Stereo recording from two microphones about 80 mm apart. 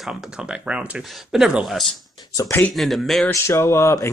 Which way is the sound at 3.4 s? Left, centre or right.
Left.